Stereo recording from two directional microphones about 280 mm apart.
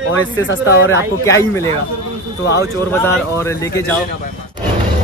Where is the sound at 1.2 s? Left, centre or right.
Centre.